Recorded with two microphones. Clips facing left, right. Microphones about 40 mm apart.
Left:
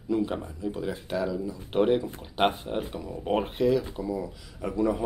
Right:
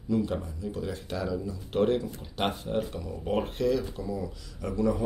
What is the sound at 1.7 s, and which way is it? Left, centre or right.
Speech, left.